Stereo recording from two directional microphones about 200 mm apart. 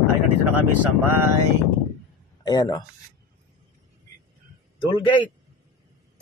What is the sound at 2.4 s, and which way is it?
Speech, 20° left (ahead or behind).